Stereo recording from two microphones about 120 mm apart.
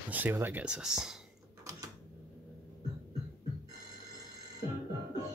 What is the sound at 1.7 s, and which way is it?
Typewriter, 25° right (ahead or behind).